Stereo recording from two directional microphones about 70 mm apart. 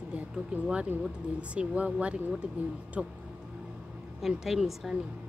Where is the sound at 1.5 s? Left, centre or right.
Centre.